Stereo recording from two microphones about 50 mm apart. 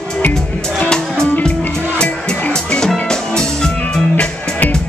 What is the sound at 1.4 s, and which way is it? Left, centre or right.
Music, centre.